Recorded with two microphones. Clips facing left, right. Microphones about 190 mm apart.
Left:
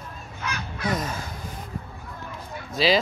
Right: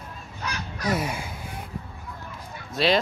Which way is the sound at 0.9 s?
10° right (ahead or behind).